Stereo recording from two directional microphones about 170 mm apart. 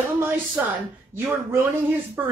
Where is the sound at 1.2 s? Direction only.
10° right (ahead or behind).